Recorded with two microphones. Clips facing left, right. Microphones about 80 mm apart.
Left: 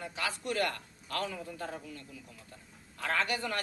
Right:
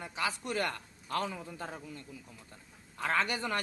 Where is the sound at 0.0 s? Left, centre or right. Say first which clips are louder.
Right 1 dB; right.